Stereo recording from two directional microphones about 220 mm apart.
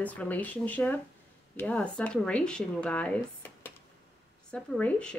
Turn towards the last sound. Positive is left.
turn(degrees=5)  # may be behind; listen again after turning